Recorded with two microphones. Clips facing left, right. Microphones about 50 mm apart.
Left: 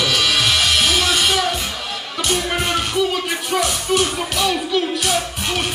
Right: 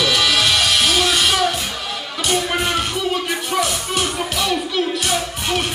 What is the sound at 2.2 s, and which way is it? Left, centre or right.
Speech, centre.